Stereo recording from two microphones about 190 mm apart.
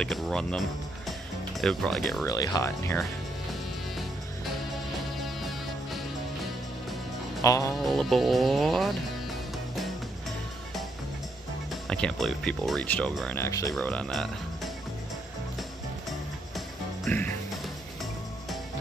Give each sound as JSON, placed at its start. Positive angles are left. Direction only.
{"t": 0.0, "sound": "speech", "side_deg": 5}
{"t": 2.2, "sound": "frog", "side_deg": 20}
{"t": 7.4, "sound": "frog", "side_deg": 15}
{"t": 7.7, "sound": "speech", "side_deg": 0}
{"t": 11.7, "sound": "speech", "side_deg": 5}
{"t": 13.4, "sound": "frog", "side_deg": 15}
{"t": 16.5, "sound": "music", "side_deg": 5}